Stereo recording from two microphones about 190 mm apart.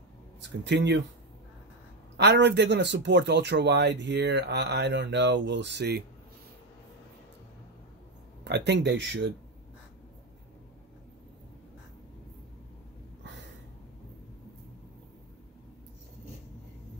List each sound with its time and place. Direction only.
0.4 s speech: 65° right (ahead or behind)
2.1 s speech: 65° right (ahead or behind)
8.5 s speech: 65° right (ahead or behind)
13.2 s a sound: 65° right (ahead or behind)